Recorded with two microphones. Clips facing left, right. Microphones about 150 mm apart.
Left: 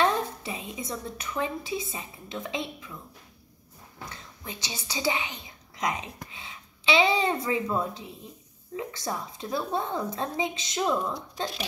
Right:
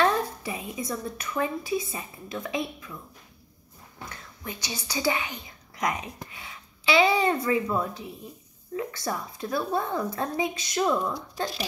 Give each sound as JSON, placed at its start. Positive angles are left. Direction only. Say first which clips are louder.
{"t": 0.0, "sound": "a woman's voice", "louder": "right 1 dB", "side_deg": 25}
{"t": 4.5, "sound": "a woman's voice", "louder": "right 2 dB", "side_deg": 25}